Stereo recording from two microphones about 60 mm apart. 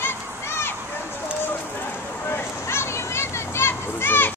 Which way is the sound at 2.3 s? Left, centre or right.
Left.